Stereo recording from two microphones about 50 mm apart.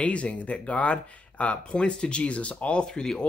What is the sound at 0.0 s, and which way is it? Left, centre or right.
Speech, left.